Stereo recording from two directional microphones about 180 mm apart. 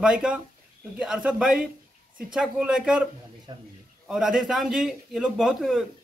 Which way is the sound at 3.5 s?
25° right (ahead or behind).